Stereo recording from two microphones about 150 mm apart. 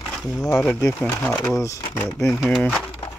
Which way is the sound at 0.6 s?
10° left (ahead or behind).